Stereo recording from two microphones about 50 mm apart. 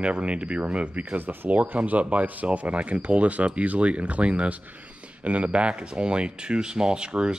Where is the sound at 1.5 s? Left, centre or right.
Right.